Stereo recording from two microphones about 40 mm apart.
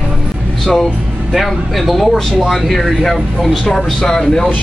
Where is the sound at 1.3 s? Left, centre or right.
Centre.